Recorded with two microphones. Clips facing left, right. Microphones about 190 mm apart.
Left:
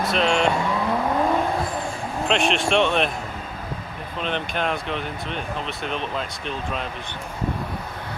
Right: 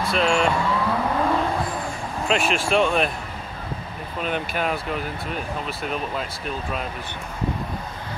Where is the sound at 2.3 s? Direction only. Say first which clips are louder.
Left 1 dB; centre (ahead or behind).